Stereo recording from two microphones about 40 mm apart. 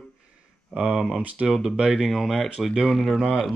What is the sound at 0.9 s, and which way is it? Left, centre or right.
Speech, centre.